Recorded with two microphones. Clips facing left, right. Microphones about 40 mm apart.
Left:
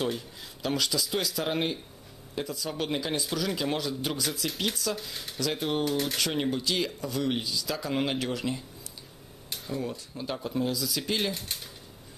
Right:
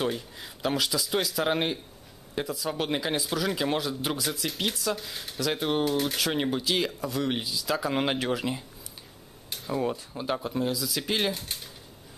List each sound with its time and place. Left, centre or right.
0.0 s speech: centre
9.8 s speech: right; by 11.6 s centre